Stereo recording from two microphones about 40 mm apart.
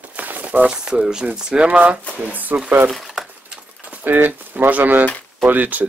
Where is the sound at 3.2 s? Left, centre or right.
Centre.